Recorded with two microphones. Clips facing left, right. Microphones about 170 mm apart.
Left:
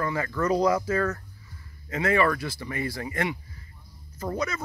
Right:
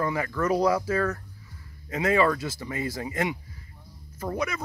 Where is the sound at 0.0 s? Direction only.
15° right (ahead or behind).